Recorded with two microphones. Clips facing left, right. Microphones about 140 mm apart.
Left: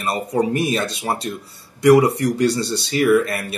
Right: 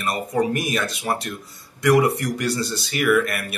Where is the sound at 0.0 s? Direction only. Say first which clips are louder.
Left 2 dB; 30° left (ahead or behind).